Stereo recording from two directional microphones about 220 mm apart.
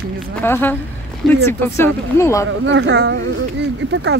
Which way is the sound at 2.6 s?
55° right (ahead or behind).